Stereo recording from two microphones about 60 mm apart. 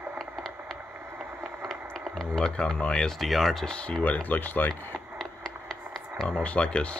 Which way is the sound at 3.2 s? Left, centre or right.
Centre.